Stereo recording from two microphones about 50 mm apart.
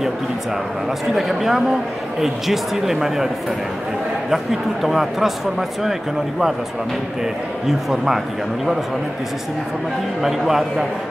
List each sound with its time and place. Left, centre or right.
1.1 s speech: centre
4.3 s speech: centre
7.6 s a man's voice: centre
10.2 s a man's voice: centre